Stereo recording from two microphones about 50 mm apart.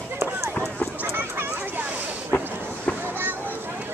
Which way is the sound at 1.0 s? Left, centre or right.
Right.